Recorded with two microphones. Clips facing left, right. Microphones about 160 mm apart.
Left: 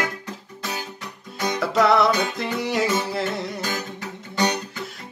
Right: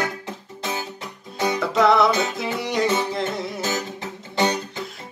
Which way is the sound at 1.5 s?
Centre (ahead or behind).